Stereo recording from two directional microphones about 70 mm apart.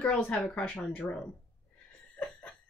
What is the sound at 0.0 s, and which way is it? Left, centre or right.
Speech, centre.